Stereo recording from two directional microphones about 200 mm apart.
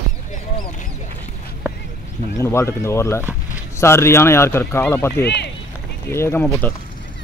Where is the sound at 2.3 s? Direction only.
15° left (ahead or behind).